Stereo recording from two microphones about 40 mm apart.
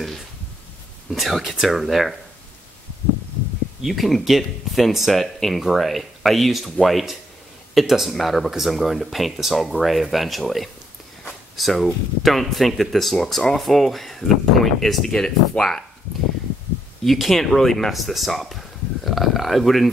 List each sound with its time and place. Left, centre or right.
1.1 s speech: centre
3.8 s speech: centre
15.0 s speech: centre
17.0 s speech: centre